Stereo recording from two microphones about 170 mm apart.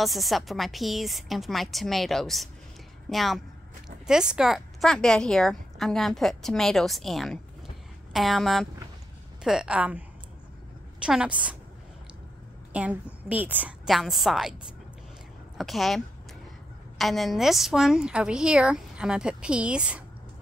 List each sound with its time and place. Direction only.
0.0 s a woman's voice: centre (ahead or behind)
12.7 s a woman's voice: 10° right (ahead or behind)
15.5 s a woman's voice: centre (ahead or behind)
17.0 s a woman's voice: centre (ahead or behind)